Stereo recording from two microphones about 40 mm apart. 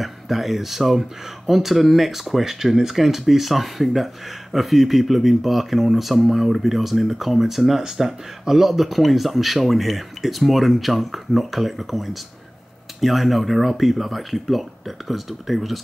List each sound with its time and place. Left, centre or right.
0.0 s speech: centre